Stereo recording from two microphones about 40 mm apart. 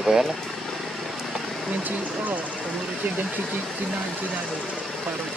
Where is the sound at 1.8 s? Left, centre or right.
Right.